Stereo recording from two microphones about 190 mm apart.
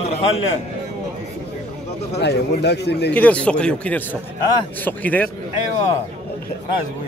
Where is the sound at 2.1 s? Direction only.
60° left (ahead or behind).